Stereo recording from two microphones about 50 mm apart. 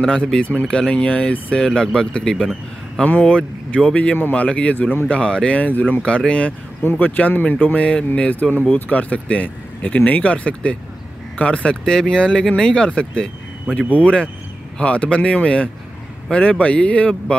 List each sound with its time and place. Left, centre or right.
0.4 s speech: left; by 2.5 s centre
3.2 s speech: left
6.0 s speech: left
6.8 s speech: left
7.2 s speech: left